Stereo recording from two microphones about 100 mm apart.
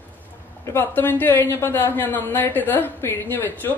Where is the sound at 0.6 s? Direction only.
20° left (ahead or behind).